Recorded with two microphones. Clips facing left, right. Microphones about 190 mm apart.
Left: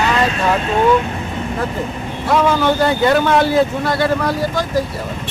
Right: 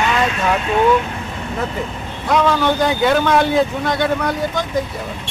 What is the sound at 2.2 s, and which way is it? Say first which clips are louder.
Speech: left 1 dB; 5° left (ahead or behind).